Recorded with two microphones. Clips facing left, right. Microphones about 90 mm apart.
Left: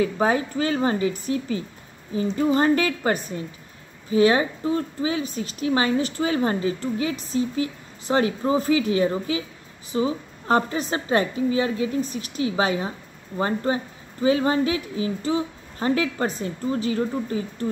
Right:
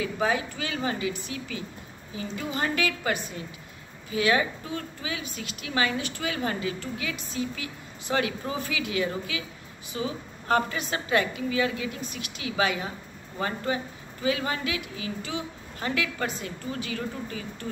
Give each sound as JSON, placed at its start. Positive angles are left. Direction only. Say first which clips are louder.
{"t": 0.0, "sound": "a woman's voice", "louder": "left 6 dB", "side_deg": 40}